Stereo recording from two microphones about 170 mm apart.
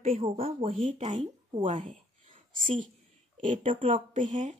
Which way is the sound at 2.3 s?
50° right (ahead or behind).